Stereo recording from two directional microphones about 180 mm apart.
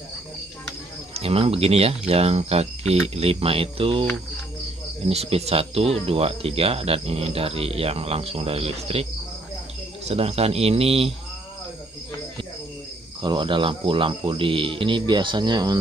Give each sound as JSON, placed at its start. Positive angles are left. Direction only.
{"t": 1.1, "sound": "speech", "side_deg": -35}
{"t": 10.0, "sound": "speech", "side_deg": -35}
{"t": 13.2, "sound": "speech", "side_deg": -25}